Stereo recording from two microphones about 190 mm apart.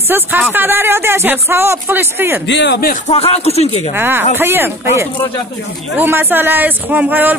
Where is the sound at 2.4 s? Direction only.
65° left (ahead or behind).